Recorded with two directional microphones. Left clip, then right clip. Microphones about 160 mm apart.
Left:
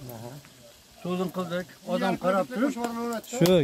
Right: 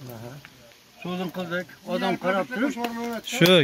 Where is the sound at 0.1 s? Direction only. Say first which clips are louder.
Right 1 dB; 45° right (ahead or behind).